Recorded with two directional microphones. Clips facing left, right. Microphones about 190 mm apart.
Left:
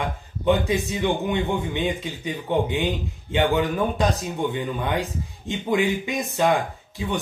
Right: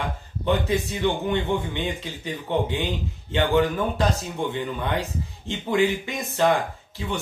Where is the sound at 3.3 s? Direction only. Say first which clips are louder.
Even; 15° left (ahead or behind).